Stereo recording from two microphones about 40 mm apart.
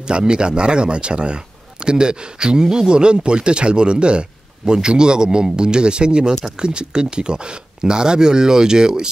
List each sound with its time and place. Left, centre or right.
0.1 s speech: right